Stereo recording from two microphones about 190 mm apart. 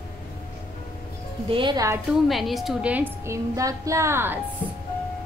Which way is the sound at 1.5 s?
25° right (ahead or behind).